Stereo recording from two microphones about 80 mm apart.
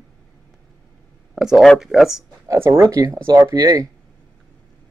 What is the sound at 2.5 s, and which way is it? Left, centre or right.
Speech, right.